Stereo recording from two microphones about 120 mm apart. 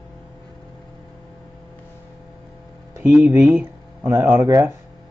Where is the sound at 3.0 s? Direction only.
15° right (ahead or behind).